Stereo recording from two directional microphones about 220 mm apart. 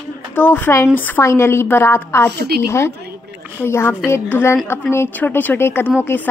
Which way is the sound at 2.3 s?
45° right (ahead or behind).